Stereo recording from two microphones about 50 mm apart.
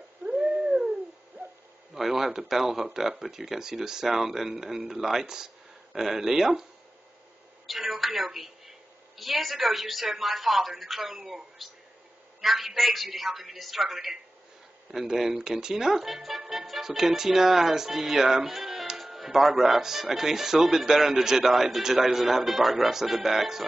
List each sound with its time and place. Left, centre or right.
0.3 s a sound: centre
1.4 s hoot: right
2.0 s a woman's voice: centre
7.6 s a woman's voice: centre